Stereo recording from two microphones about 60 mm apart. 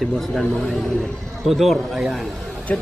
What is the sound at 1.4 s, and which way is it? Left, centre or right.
Speech, centre.